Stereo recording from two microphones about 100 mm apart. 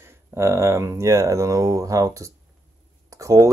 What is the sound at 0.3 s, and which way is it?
Speech, 25° right (ahead or behind).